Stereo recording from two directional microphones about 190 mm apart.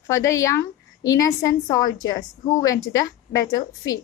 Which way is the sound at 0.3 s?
15° left (ahead or behind).